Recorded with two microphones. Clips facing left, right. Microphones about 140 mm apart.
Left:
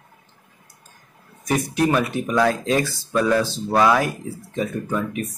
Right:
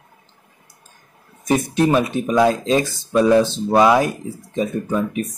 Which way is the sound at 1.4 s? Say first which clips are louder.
Right 3 dB; 25° right (ahead or behind).